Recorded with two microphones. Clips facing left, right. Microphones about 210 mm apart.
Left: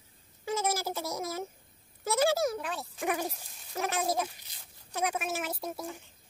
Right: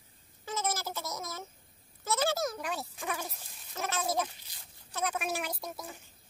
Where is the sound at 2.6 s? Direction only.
Centre (ahead or behind).